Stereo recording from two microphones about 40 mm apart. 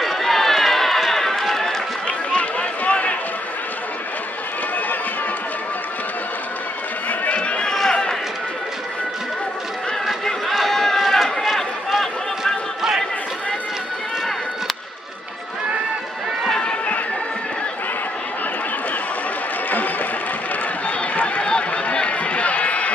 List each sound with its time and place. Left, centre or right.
0.0 s run: centre
2.0 s run: left
7.1 s music: left
7.6 s run: centre
10.6 s run: centre
11.4 s run: centre
16.6 s a sound: left
21.4 s run: left